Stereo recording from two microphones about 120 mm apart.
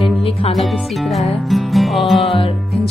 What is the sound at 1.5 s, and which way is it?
Music, centre (ahead or behind).